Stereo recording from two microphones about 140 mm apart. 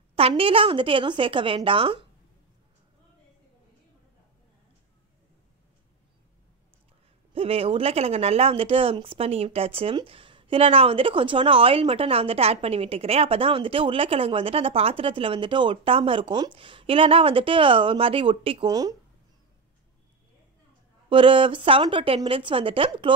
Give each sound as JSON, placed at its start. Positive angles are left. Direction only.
{"t": 0.3, "sound": "speech", "side_deg": -40}
{"t": 7.3, "sound": "speech", "side_deg": -45}
{"t": 18.7, "sound": "speech", "side_deg": -25}
{"t": 21.1, "sound": "speech", "side_deg": -35}